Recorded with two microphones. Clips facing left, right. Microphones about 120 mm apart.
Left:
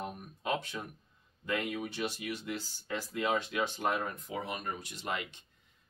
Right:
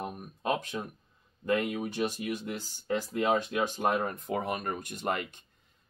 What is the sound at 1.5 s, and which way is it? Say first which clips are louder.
Speech: right 5 dB; 40° right (ahead or behind).